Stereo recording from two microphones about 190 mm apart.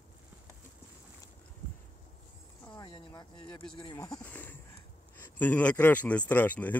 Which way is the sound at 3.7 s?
20° left (ahead or behind).